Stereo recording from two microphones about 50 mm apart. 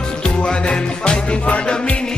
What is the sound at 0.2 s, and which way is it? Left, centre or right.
Music, centre.